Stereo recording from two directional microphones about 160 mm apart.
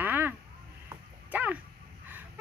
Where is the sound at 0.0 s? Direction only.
10° right (ahead or behind).